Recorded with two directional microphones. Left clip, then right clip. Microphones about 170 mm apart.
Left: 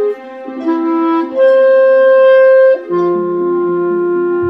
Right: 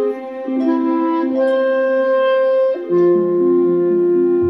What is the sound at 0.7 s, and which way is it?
Music, centre (ahead or behind).